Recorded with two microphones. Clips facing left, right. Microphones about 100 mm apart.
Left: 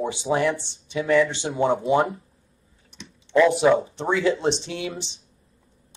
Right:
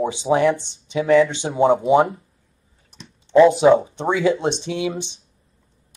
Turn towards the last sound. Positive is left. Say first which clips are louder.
# right 3 dB
turn(degrees=-15)  # may be behind; listen again after turning